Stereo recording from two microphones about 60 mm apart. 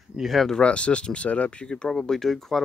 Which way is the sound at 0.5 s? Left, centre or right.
Centre.